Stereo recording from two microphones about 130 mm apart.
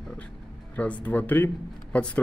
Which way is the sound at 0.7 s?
10° left (ahead or behind).